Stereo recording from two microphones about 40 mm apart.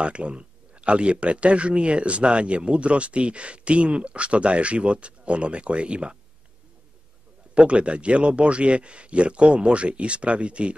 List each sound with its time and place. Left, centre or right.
0.0 s speech: right
7.5 s speech: right